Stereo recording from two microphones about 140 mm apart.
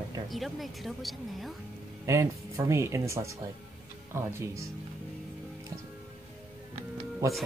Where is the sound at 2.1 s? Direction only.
20° right (ahead or behind).